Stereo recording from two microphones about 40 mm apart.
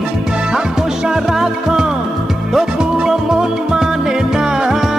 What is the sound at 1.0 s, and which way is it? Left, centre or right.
Music, centre.